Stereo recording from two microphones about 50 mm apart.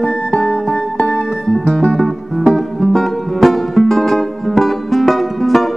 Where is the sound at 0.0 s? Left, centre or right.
Left.